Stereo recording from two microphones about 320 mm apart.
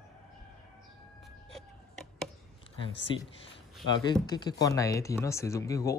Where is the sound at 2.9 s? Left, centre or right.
Left.